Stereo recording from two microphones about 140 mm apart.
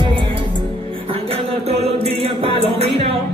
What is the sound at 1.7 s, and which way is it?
Music, 45° right (ahead or behind).